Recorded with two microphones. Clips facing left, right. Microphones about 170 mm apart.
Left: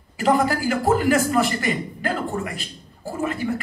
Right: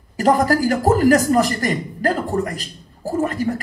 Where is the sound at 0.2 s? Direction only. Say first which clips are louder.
Right 4 dB; 40° right (ahead or behind).